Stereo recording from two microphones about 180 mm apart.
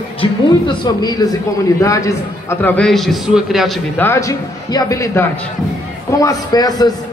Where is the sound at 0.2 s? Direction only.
25° left (ahead or behind); by 3.8 s centre (ahead or behind).